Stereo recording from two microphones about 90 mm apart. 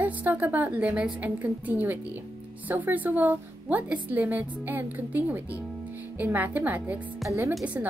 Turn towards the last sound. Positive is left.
turn(degrees=-30)  # may be behind; listen again after turning